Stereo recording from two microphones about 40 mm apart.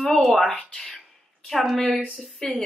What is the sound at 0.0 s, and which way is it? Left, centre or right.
Speech, centre.